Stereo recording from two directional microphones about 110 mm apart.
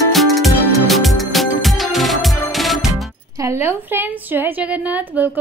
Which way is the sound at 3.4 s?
20° right (ahead or behind).